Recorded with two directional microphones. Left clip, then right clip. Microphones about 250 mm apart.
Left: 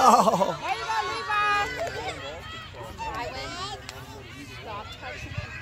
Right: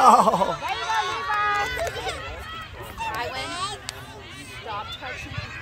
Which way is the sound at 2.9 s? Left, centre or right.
Right.